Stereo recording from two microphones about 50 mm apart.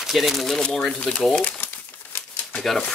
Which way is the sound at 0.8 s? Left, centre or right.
Left.